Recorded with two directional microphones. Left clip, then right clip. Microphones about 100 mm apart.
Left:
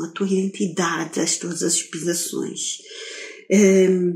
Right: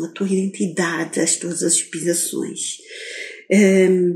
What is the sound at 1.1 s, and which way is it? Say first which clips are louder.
Speech: right 3 dB; 55° right (ahead or behind).